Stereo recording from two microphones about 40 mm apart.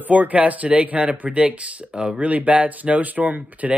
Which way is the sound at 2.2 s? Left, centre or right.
Right.